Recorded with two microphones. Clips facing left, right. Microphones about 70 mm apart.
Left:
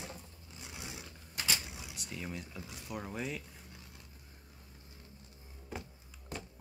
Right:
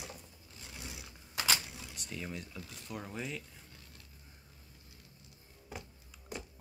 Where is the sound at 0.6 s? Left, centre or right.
Centre.